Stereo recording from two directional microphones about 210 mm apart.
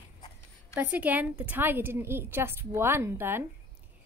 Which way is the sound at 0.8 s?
10° right (ahead or behind).